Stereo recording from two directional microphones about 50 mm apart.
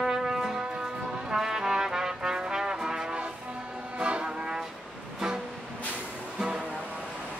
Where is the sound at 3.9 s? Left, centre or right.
Centre.